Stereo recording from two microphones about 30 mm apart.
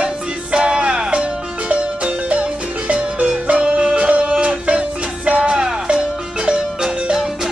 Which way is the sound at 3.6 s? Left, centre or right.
Right.